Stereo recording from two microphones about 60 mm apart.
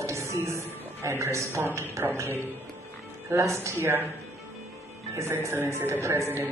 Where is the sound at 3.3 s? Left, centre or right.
Right.